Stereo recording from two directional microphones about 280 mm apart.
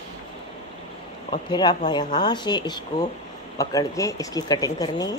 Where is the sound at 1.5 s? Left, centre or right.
Centre.